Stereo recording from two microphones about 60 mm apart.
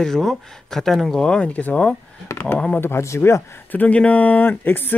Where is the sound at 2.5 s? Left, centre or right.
Centre.